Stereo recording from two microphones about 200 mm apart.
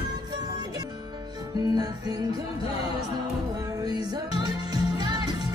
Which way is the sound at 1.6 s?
20° right (ahead or behind).